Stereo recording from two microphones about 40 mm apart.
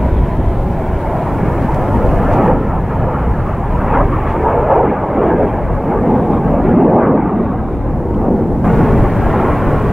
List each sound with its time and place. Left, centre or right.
2.0 s vehicle: centre
3.9 s vehicle: centre
8.6 s vehicle: centre